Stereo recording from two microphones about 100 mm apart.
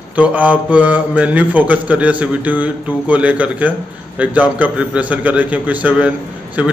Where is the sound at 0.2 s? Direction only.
15° right (ahead or behind).